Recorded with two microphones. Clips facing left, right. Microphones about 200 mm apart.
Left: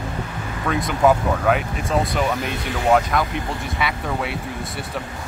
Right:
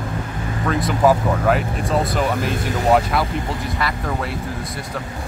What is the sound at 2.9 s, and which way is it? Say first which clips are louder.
Speech: even; 5° right (ahead or behind).